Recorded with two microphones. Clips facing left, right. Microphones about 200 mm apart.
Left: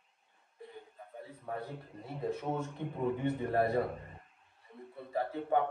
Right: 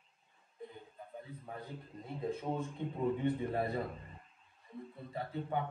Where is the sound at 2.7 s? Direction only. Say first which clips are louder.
Left 1 dB; 60° left (ahead or behind).